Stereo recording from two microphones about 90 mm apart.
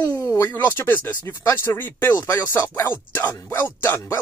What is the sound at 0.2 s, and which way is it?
Speech, 30° left (ahead or behind).